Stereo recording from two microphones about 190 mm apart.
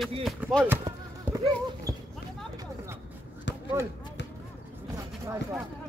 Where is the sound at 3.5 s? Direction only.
65° left (ahead or behind).